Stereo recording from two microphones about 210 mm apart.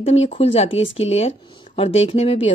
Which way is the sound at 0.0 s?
30° left (ahead or behind).